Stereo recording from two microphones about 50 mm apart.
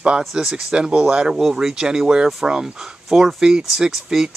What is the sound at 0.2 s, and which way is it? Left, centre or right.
Speech, centre.